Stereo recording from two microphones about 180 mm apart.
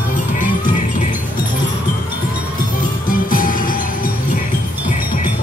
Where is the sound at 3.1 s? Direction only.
50° left (ahead or behind).